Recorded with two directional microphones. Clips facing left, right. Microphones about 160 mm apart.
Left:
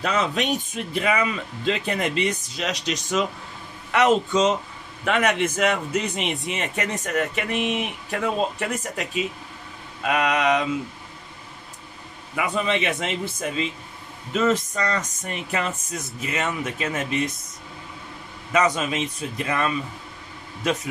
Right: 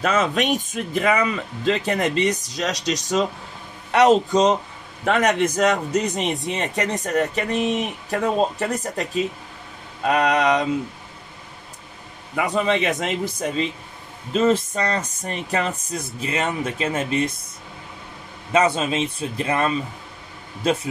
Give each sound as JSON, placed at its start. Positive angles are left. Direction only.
{"t": 0.0, "sound": "speech", "side_deg": -50}
{"t": 12.4, "sound": "speech", "side_deg": -40}
{"t": 18.5, "sound": "a man's voice", "side_deg": -30}